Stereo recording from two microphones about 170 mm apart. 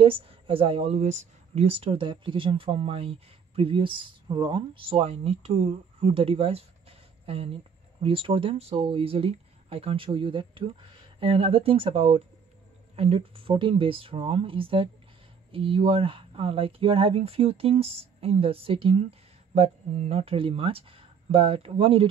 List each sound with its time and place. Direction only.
0.0 s speech: 35° right (ahead or behind)